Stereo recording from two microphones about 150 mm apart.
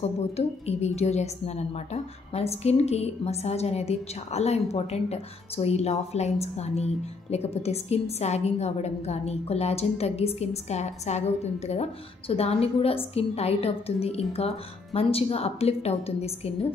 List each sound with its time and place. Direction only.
0.4 s a woman's voice: 45° left (ahead or behind)